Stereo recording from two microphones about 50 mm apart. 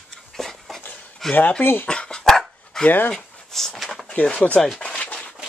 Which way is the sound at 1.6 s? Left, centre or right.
Left.